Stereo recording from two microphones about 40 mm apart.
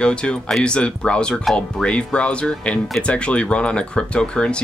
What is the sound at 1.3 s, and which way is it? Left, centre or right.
Speech, centre.